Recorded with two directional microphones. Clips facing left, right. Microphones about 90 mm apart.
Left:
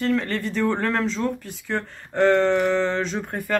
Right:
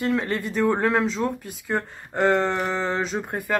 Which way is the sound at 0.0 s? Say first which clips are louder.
Left 1 dB; 15° right (ahead or behind).